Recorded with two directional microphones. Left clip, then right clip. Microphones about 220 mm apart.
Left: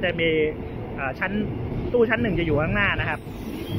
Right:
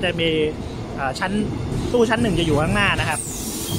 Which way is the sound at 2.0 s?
20° right (ahead or behind).